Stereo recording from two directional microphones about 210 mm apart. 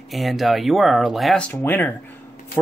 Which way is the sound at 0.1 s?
Centre (ahead or behind).